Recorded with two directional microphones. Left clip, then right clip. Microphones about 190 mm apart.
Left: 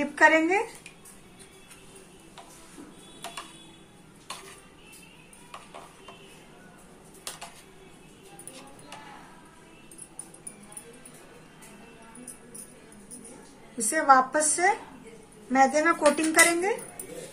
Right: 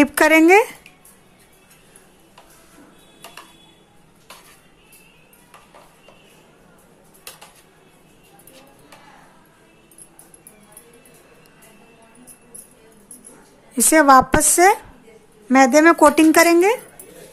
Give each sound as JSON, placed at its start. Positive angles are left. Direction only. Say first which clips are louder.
{"t": 0.0, "sound": "speech", "louder": "right 7 dB", "side_deg": -60}
{"t": 13.9, "sound": "speech", "louder": "right 9 dB", "side_deg": -60}